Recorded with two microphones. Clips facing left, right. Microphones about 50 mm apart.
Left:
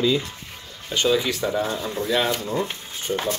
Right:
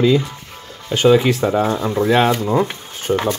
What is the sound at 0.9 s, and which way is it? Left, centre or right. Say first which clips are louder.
Speech: right 8 dB; right.